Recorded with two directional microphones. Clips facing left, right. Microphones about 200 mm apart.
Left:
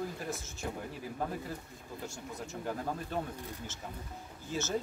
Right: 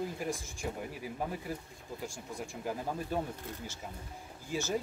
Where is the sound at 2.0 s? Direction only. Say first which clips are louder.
Right 1 dB; 10° right (ahead or behind).